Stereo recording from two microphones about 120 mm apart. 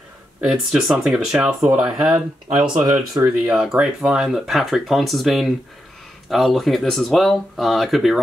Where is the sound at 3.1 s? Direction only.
30° right (ahead or behind).